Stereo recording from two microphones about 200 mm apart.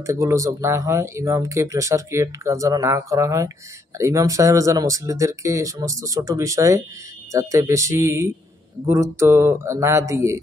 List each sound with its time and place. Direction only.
0.0 s speech: 15° right (ahead or behind)